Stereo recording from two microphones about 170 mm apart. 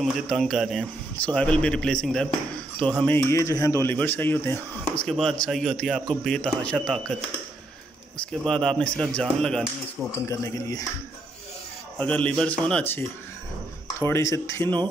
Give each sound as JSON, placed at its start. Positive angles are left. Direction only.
{"t": 0.0, "sound": "a man's voice", "side_deg": 0}
{"t": 8.5, "sound": "a man's voice", "side_deg": 5}
{"t": 10.2, "sound": "speech", "side_deg": 20}
{"t": 12.0, "sound": "speech", "side_deg": 10}
{"t": 14.0, "sound": "speech", "side_deg": 15}